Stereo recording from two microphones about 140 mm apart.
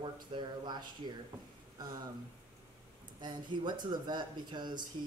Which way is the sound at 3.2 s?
35° right (ahead or behind).